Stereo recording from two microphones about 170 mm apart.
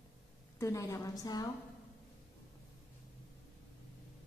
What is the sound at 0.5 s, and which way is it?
Speech, 15° left (ahead or behind).